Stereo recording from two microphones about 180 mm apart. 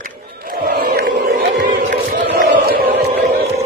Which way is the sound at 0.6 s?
50° right (ahead or behind).